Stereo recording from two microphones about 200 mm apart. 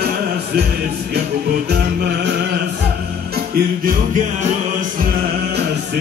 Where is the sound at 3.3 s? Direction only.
50° right (ahead or behind).